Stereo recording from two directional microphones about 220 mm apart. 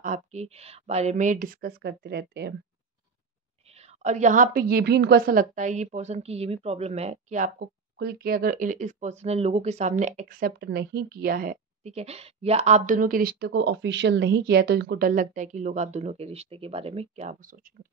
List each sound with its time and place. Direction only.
0.0 s a woman's voice: 35° right (ahead or behind)
4.0 s a woman's voice: 35° right (ahead or behind)